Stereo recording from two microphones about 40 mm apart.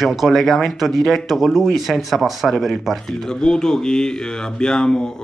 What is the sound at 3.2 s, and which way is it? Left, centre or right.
Speech, centre.